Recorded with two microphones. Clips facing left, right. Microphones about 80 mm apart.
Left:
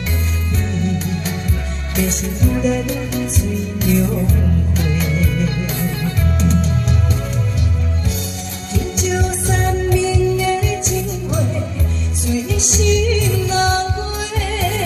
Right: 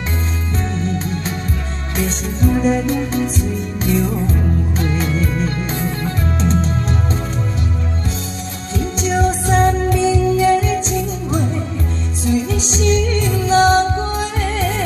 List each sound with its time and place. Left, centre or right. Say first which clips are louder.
2.0 s music: right 3 dB; right
8.7 s music: right 1 dB; right